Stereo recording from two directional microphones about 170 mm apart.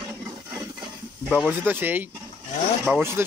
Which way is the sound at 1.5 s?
10° right (ahead or behind).